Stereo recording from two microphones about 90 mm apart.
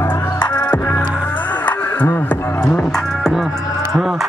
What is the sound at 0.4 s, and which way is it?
Music, 50° left (ahead or behind).